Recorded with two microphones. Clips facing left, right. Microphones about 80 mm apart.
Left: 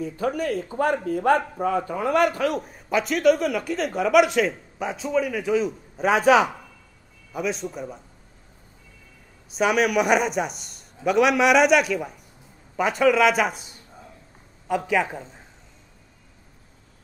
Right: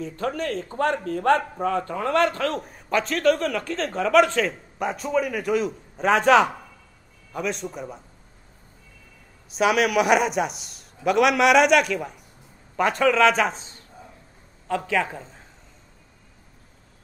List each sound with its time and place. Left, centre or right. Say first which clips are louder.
0.0 s a man's voice: left 2 dB; centre
4.7 s a man's voice: right 1 dB; centre
9.5 s a man's voice: even; centre